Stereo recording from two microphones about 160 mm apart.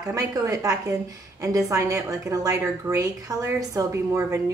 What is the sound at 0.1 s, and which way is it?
A woman's voice, 20° right (ahead or behind).